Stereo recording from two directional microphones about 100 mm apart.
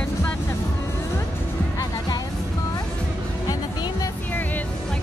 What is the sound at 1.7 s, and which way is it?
Music, 40° left (ahead or behind).